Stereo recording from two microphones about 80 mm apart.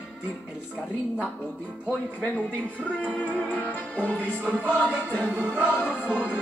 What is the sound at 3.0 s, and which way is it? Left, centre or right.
Music, centre.